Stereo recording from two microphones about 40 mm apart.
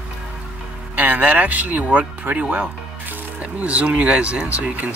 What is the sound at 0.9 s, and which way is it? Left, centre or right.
Speech, right.